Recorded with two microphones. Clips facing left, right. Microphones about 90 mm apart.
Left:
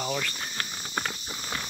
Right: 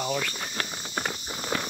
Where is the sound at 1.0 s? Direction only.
25° right (ahead or behind).